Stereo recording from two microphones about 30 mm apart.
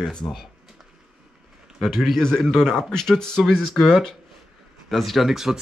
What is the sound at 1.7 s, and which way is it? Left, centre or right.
A man's voice, centre.